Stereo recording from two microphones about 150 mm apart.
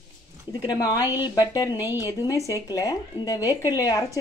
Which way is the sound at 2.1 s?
20° left (ahead or behind).